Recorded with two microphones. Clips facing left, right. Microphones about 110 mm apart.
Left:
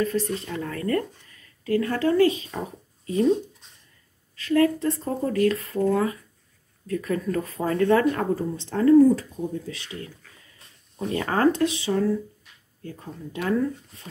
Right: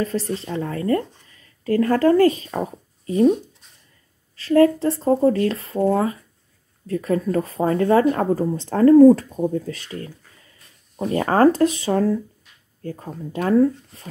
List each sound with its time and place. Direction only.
0.0 s speech: 30° right (ahead or behind)
1.6 s speech: 40° right (ahead or behind)
4.4 s speech: 35° right (ahead or behind)